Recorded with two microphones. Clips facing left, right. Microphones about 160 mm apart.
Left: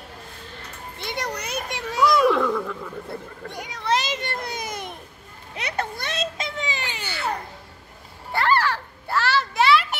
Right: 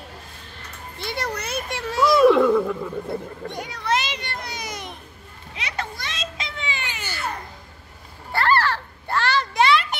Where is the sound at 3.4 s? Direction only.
15° left (ahead or behind).